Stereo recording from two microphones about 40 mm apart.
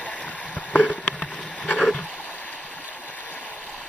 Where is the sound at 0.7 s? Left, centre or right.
Left.